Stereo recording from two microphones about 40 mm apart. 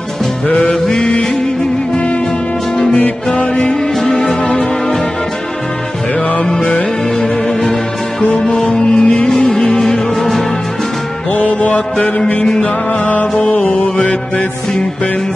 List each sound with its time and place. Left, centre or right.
0.9 s music: left
3.3 s music: left
6.4 s music: centre
9.5 s music: centre
11.3 s music: left
13.4 s mantra: left